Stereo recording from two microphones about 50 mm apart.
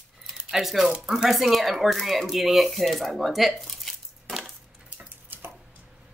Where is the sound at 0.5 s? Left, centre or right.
Centre.